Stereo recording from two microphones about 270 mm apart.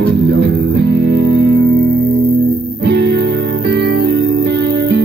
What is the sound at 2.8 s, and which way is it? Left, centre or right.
Music, right.